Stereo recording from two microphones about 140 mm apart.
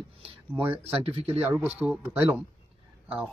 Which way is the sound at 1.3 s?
10° right (ahead or behind).